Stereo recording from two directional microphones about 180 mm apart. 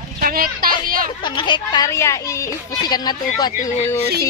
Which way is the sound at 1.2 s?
25° left (ahead or behind).